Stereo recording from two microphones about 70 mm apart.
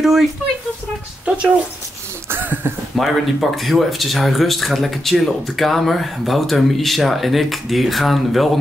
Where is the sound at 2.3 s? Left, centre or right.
Right.